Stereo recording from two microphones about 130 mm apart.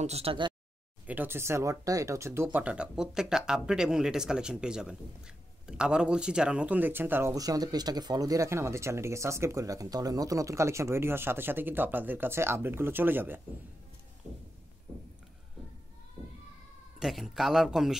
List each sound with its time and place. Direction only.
0.0 s speech: 50° right (ahead or behind)
1.0 s speech: 15° right (ahead or behind)
17.0 s speech: centre (ahead or behind)